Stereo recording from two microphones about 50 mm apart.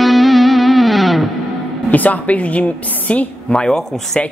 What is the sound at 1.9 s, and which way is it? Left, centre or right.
Speech, left.